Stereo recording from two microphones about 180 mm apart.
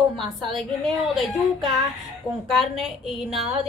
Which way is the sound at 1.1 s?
Centre (ahead or behind).